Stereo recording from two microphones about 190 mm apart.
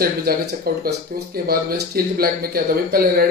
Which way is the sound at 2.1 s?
50° right (ahead or behind).